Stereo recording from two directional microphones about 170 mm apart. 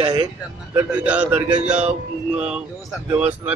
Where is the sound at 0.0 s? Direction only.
25° right (ahead or behind).